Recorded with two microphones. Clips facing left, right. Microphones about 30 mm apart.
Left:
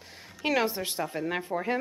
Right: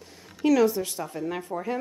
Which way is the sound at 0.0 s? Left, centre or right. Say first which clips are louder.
Even; left.